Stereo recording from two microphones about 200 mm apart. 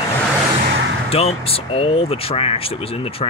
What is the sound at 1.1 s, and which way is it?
Speech, 30° left (ahead or behind).